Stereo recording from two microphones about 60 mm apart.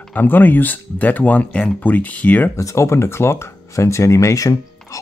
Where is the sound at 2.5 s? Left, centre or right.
Left.